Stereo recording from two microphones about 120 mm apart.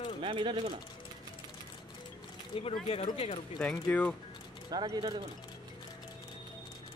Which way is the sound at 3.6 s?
10° left (ahead or behind).